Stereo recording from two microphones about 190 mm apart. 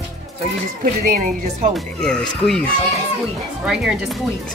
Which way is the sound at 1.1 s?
45° right (ahead or behind).